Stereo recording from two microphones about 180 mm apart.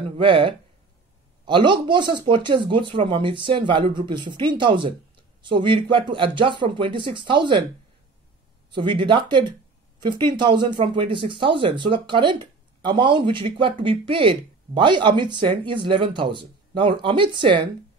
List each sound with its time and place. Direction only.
0.2 s speech: 30° right (ahead or behind)
8.7 s speech: 25° right (ahead or behind)